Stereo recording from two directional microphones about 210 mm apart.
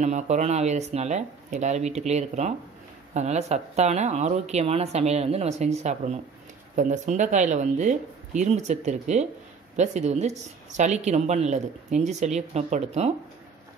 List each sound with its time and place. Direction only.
0.0 s speech: 35° right (ahead or behind)